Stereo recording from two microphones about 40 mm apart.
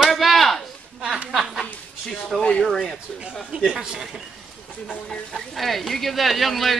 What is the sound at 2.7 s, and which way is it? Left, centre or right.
Speech, centre.